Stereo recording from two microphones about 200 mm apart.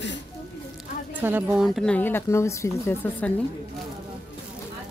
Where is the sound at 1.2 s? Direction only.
5° right (ahead or behind); by 3.3 s 10° left (ahead or behind).